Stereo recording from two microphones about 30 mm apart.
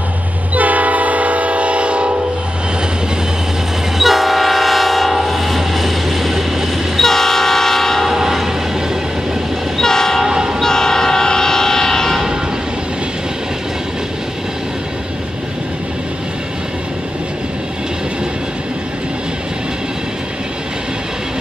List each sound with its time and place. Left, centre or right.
0.6 s train: right
4.0 s train: centre
5.6 s vehicle: centre
7.0 s train: centre
8.1 s train: centre
9.8 s train: centre
10.2 s train: centre
10.6 s train: centre